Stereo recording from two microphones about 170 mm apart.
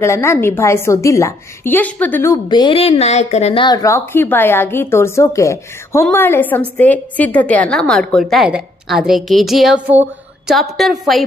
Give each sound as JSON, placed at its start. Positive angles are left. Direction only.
{"t": 0.0, "sound": "a woman's voice", "side_deg": 15}
{"t": 3.6, "sound": "a woman's voice", "side_deg": 20}